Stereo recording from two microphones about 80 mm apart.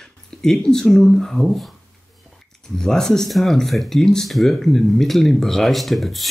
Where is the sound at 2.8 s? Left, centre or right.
Centre.